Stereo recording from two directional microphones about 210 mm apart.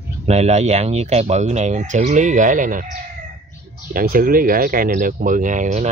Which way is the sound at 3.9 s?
45° right (ahead or behind).